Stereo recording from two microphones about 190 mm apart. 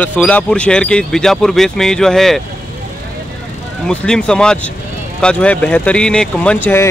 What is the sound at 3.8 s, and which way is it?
Speech, 5° left (ahead or behind).